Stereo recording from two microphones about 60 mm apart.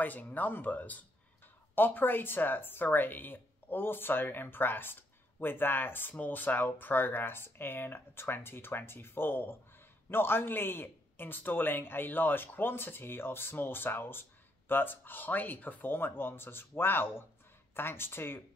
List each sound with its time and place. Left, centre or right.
0.0 s speech: left